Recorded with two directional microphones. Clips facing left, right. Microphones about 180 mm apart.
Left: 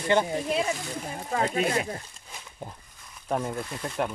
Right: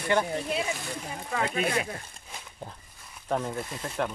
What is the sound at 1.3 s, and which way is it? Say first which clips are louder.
Speech: left 2 dB; 35° left (ahead or behind).